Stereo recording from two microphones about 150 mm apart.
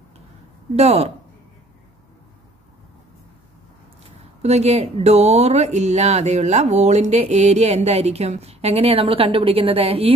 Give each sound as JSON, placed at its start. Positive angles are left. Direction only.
{"t": 0.7, "sound": "speech", "side_deg": -45}
{"t": 4.0, "sound": "speech", "side_deg": -45}